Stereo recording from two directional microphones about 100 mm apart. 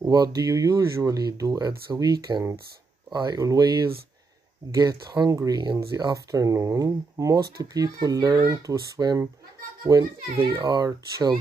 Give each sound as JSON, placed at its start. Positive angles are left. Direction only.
{"t": 0.0, "sound": "speech", "side_deg": -40}
{"t": 10.6, "sound": "speech", "side_deg": -35}